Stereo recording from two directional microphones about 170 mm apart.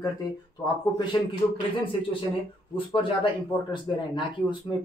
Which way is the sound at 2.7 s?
30° left (ahead or behind).